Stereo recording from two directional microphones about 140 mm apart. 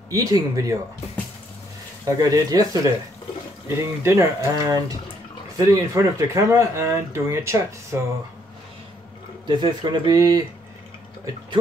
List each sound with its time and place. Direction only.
0.1 s speech: 25° right (ahead or behind)
2.0 s speech: 25° right (ahead or behind)
9.5 s speech: 30° right (ahead or behind)